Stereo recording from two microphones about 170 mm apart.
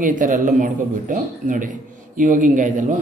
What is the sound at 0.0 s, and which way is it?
Speech, 50° right (ahead or behind).